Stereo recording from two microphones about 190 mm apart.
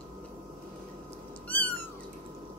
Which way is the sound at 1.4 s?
10° left (ahead or behind).